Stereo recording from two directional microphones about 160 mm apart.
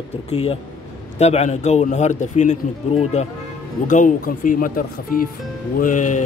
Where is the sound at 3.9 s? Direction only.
55° left (ahead or behind).